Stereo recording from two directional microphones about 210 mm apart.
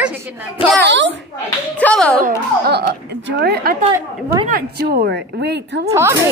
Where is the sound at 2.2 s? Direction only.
50° right (ahead or behind).